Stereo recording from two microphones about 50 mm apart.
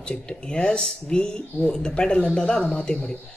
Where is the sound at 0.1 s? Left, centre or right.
Centre.